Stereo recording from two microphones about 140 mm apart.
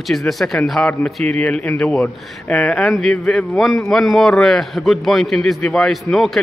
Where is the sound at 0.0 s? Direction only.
Centre (ahead or behind).